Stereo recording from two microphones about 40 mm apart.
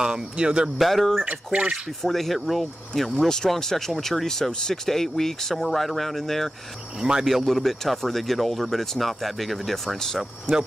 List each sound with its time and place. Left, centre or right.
0.0 s speech: centre
0.7 s speech: centre
1.2 s speech: right
2.0 s speech: centre
2.9 s speech: centre
7.0 s speech: centre
7.4 s speech: centre